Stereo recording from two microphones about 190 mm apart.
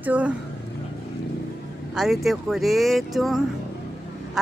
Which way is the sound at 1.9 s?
Centre (ahead or behind).